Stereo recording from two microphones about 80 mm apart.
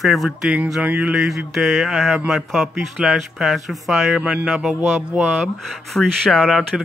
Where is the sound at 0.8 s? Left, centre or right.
Centre.